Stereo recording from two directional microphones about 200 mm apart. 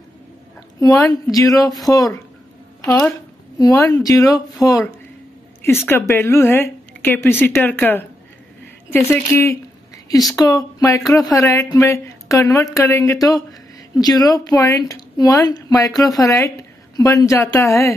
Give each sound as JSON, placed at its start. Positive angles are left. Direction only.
{"t": 0.7, "sound": "speech", "side_deg": 15}
{"t": 2.8, "sound": "speech", "side_deg": 5}